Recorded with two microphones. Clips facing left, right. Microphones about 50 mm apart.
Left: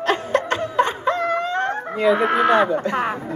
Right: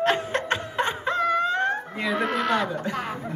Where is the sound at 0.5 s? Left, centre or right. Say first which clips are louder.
Left 6 dB; left.